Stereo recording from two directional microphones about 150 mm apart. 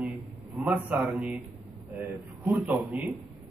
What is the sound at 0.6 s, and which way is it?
A man's voice, 10° right (ahead or behind).